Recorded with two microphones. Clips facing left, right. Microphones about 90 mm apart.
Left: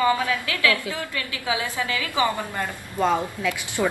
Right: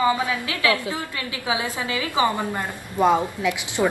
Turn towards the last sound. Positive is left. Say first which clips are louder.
# right 2 dB
turn(degrees=-20)  # may be behind; listen again after turning